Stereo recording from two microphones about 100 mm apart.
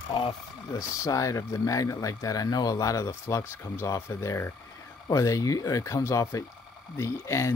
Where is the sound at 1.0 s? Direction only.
35° left (ahead or behind).